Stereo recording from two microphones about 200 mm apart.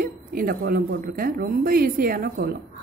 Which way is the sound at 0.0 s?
45° right (ahead or behind).